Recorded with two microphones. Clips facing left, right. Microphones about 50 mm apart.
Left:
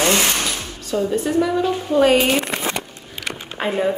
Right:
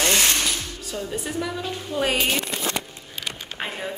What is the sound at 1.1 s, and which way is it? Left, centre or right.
Speech, centre.